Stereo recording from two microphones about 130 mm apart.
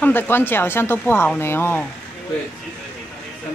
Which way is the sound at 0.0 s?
15° left (ahead or behind).